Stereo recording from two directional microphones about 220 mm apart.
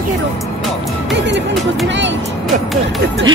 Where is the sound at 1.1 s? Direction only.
55° right (ahead or behind).